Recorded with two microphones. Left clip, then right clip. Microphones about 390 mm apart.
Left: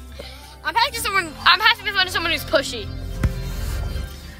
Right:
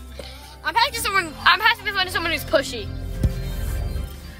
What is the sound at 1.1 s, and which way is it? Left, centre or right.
Music, centre.